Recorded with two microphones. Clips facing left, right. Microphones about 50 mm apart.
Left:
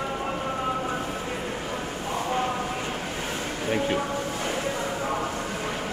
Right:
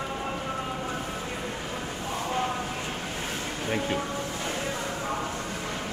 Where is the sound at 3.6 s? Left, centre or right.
Centre.